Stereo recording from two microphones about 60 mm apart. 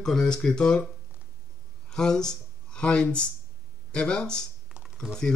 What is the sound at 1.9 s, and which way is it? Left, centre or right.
Speech, centre.